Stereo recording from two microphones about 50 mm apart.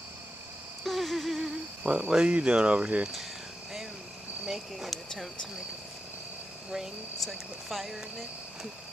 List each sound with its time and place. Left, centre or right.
0.8 s insect: centre
1.9 s speech: centre
4.5 s speech: centre
7.2 s speech: centre